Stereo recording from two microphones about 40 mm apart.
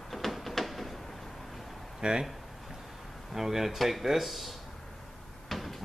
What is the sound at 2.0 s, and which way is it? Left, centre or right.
Speech, centre.